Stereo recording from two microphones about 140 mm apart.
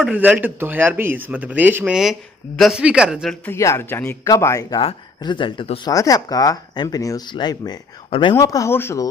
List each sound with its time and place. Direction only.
0.1 s speech: 10° right (ahead or behind)
2.0 s speech: centre (ahead or behind)
3.4 s speech: 20° left (ahead or behind); by 5.8 s 35° left (ahead or behind)
5.9 s speech: 25° left (ahead or behind)